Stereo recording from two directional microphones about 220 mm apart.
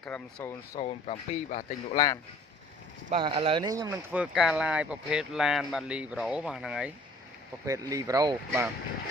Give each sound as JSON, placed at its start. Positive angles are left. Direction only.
{"t": 0.0, "sound": "speech", "side_deg": 5}
{"t": 0.7, "sound": "speech", "side_deg": 30}
{"t": 3.1, "sound": "speech", "side_deg": -25}
{"t": 7.6, "sound": "speech", "side_deg": -15}